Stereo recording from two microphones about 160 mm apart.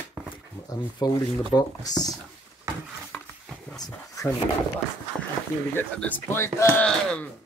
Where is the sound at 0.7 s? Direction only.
25° left (ahead or behind).